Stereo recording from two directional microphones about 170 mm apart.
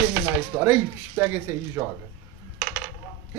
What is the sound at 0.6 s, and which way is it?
Speech, 15° right (ahead or behind).